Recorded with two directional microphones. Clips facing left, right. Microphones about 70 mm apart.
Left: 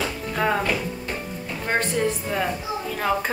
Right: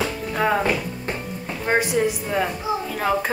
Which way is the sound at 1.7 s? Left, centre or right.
Centre.